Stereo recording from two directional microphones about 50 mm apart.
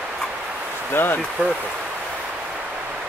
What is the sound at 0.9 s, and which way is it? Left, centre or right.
Speech, left.